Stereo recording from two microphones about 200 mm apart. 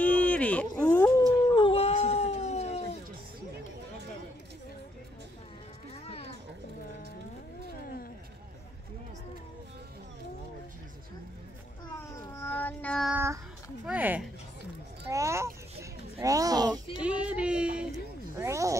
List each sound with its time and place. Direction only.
0.0 s dog: 5° left (ahead or behind)
1.5 s dog: 25° left (ahead or behind)
12.2 s child singing: 10° left (ahead or behind)
13.1 s child singing: 15° right (ahead or behind)
13.8 s a sound: 5° right (ahead or behind)
17.0 s a sound: 5° right (ahead or behind)